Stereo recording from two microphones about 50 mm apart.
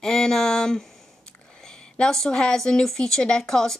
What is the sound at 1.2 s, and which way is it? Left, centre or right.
Speech, centre.